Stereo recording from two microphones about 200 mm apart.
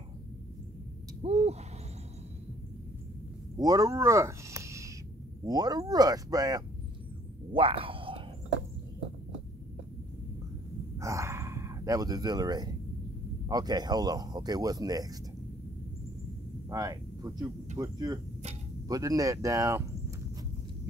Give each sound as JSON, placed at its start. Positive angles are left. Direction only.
{"t": 1.2, "sound": "owl", "side_deg": -30}
{"t": 3.5, "sound": "speech", "side_deg": -20}
{"t": 11.0, "sound": "a sound", "side_deg": -15}
{"t": 13.5, "sound": "speech", "side_deg": -20}
{"t": 16.6, "sound": "a sound", "side_deg": -20}
{"t": 17.7, "sound": "speech", "side_deg": -20}